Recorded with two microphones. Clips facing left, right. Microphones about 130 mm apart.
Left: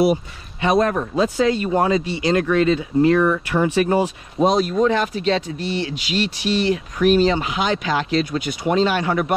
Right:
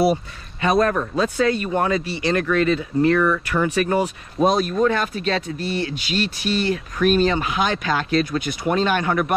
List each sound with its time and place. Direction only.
0.6 s a man's voice: 20° left (ahead or behind)
3.2 s speech: 35° left (ahead or behind)